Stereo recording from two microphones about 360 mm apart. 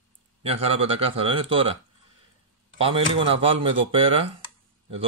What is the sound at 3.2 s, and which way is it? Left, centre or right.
A man's voice, centre.